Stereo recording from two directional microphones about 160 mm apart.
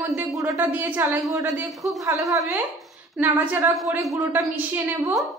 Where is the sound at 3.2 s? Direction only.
10° right (ahead or behind).